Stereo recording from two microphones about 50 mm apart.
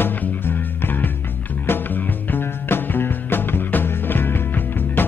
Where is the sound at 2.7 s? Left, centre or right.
Left.